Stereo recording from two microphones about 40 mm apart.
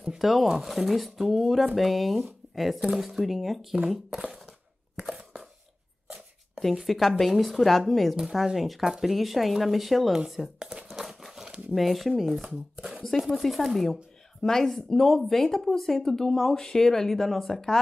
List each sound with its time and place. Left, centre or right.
0.2 s speech: centre
4.1 s speech: centre
5.1 s chopping: centre
6.8 s speech: centre
10.9 s crumpling: centre
11.7 s speech: centre